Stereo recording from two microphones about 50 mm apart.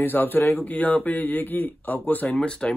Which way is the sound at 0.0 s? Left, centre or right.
Left.